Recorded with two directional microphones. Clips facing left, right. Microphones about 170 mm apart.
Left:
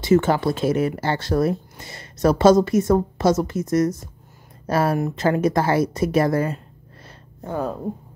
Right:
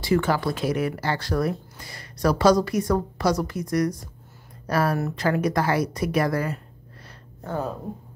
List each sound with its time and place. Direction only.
0.0 s speech: 25° left (ahead or behind)